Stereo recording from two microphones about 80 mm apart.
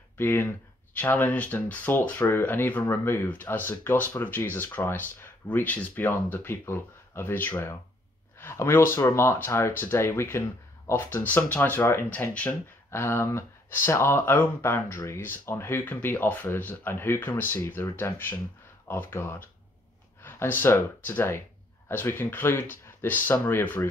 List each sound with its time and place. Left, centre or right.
0.2 s speech: left
12.1 s speech: centre
12.9 s speech: left
14.3 s speech: left